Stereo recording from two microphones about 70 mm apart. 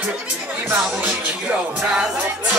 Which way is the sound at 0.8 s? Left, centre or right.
Right.